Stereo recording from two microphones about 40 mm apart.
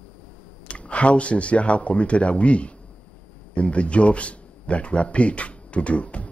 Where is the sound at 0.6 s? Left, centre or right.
Left.